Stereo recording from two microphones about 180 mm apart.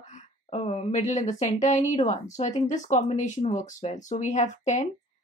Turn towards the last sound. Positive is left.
turn(degrees=40)  # may be behind; listen again after turning